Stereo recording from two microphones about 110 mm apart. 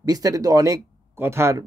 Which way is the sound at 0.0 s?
35° right (ahead or behind).